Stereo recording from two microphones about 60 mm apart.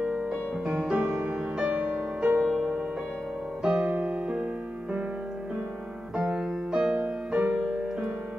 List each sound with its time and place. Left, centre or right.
0.0 s music: right
0.3 s music: centre
1.7 s music: right
3.6 s music: centre
6.1 s music: centre
7.0 s music: right